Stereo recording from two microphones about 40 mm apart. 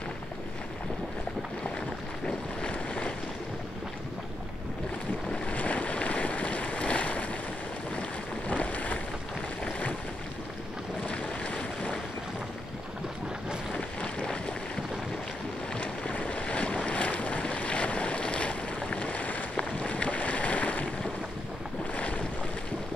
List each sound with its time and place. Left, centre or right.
2.6 s boat: left
5.5 s boat: left
8.5 s boat: left
11.1 s boat: left
14.2 s boat: left
15.8 s boat: left
21.9 s boat: left